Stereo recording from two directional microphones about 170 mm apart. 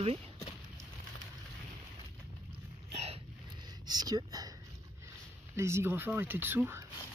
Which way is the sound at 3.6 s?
25° right (ahead or behind).